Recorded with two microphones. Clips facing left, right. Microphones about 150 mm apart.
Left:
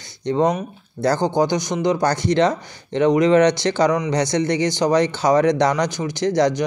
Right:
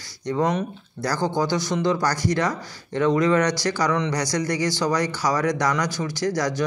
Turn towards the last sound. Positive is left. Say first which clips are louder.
# left 6 dB
turn(degrees=25)  # may be behind; listen again after turning